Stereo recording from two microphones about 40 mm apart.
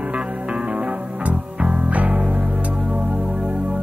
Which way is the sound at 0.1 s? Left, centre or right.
Right.